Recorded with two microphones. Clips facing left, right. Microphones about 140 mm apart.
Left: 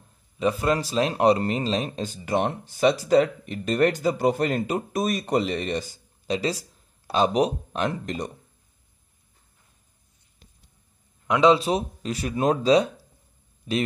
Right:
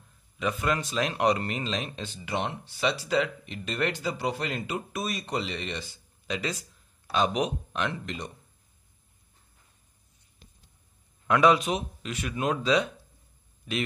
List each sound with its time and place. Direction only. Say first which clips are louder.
0.4 s speech: left 5 dB; 35° left (ahead or behind)
11.2 s speech: left 3 dB; 20° left (ahead or behind)